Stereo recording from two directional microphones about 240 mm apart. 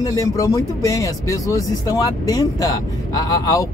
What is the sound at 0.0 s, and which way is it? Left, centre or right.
Speech, centre.